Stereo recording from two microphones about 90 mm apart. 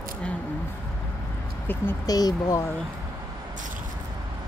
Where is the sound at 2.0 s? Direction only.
45° left (ahead or behind).